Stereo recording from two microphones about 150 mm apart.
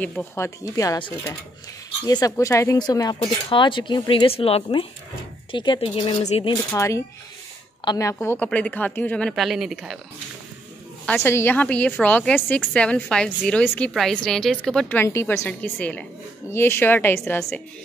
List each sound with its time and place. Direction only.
0.0 s speech: 10° left (ahead or behind); by 6.5 s 35° left (ahead or behind)
6.7 s a woman's voice: 20° left (ahead or behind)
9.3 s speech: centre (ahead or behind)
11.1 s a woman's voice: 15° left (ahead or behind)
15.0 s a woman's voice: 20° left (ahead or behind)